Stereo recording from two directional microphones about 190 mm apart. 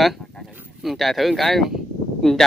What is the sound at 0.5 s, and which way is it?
Speech, 5° right (ahead or behind).